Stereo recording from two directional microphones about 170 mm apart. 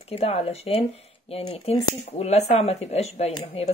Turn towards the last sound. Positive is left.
turn(degrees=40)  # may be behind; listen again after turning